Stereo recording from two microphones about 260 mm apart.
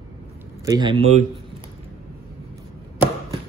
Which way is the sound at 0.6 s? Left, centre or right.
Centre.